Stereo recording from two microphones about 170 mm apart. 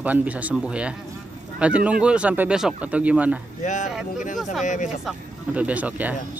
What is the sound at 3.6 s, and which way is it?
Speech, 45° left (ahead or behind).